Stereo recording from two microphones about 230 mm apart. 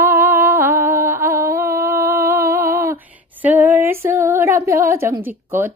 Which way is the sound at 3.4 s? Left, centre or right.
Centre.